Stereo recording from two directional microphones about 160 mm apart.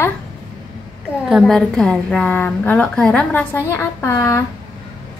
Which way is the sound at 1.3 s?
Centre (ahead or behind).